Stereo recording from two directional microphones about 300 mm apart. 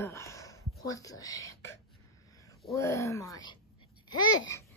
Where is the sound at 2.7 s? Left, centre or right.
Centre.